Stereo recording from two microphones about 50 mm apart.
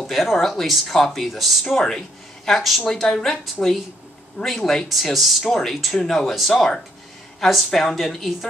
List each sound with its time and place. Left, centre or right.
0.0 s speech: centre
4.4 s speech: centre